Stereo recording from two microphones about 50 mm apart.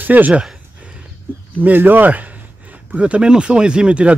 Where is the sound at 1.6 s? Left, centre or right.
Right.